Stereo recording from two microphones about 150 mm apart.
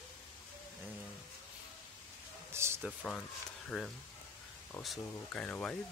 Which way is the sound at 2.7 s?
5° left (ahead or behind).